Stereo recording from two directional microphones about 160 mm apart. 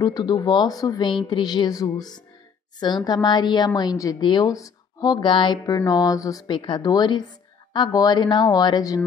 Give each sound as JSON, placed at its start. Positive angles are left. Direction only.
{"t": 0.0, "sound": "a woman's voice", "side_deg": 25}